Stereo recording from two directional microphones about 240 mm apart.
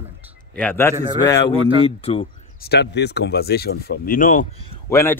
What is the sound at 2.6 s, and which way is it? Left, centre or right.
Speech, left.